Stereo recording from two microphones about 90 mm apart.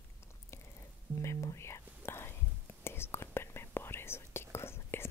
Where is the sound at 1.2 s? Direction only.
35° left (ahead or behind).